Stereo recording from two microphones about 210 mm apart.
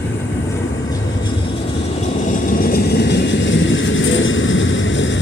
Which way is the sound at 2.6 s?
50° left (ahead or behind).